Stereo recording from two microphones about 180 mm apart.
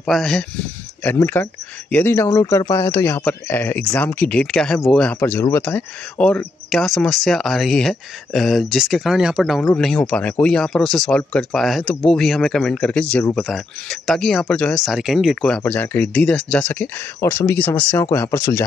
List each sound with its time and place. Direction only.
0.0 s speech: 5° left (ahead or behind)